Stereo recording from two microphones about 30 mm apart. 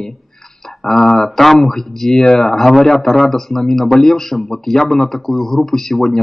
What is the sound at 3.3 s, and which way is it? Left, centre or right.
Mantra, centre.